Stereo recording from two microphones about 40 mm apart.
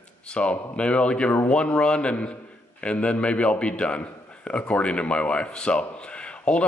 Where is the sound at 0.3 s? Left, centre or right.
Left.